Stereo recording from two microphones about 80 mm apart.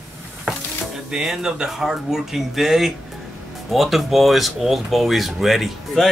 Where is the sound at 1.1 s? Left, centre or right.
Centre.